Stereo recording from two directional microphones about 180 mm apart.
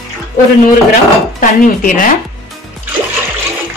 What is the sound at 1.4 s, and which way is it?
Speech, 50° left (ahead or behind).